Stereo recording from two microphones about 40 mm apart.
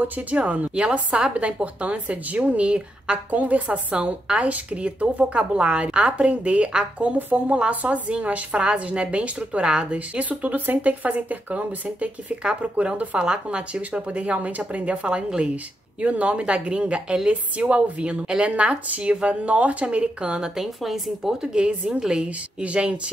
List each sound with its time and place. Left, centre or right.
0.3 s a woman's voice: right
3.3 s a woman's voice: right
7.2 s a woman's voice: right
7.4 s a woman's voice: right
8.5 s a woman's voice: right
9.9 s a woman's voice: right
20.5 s a woman's voice: centre; by 23.1 s right